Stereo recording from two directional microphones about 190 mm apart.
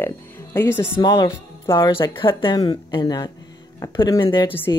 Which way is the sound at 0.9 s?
20° left (ahead or behind).